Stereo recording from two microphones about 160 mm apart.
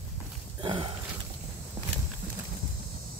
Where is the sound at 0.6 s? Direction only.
35° right (ahead or behind).